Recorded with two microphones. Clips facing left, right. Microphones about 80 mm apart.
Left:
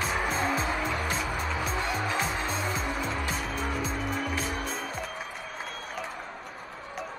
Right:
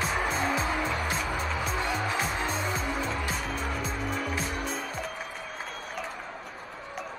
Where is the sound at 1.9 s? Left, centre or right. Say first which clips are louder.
Even; centre.